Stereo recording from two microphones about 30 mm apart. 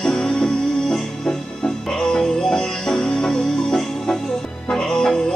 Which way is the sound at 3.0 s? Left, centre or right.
Left.